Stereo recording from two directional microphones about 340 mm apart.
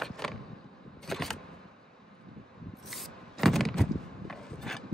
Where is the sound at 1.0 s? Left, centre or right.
Centre.